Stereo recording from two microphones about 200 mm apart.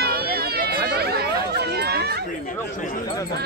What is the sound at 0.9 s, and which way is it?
Chatter, 50° right (ahead or behind).